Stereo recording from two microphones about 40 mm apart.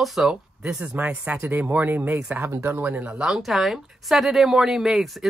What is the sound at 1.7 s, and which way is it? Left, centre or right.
Speech, right.